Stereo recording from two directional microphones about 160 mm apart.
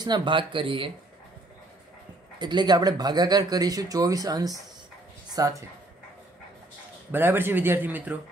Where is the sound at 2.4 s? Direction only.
25° right (ahead or behind).